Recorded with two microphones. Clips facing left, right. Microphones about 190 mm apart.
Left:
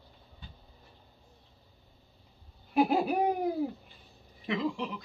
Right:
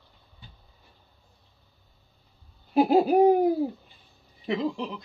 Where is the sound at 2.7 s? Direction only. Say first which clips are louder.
Right 6 dB; 35° right (ahead or behind).